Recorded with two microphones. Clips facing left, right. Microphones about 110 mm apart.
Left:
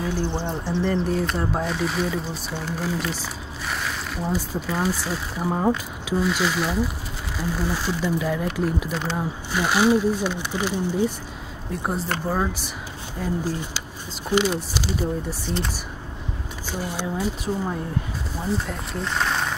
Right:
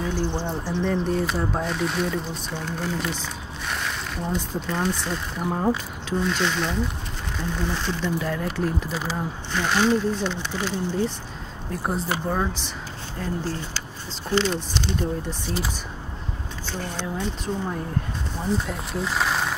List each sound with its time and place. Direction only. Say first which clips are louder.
0.5 s speech: left 1 dB; centre (ahead or behind)
8.9 s speech: left 2 dB; 5° right (ahead or behind)
9.5 s speech: left 2 dB; 10° left (ahead or behind)
11.7 s speech: even; centre (ahead or behind)
16.7 s speech: left 3 dB; 10° left (ahead or behind)